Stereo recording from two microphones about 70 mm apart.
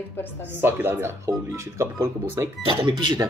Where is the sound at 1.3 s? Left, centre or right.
Right.